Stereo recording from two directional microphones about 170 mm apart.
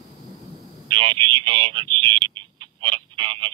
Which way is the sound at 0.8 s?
30° right (ahead or behind).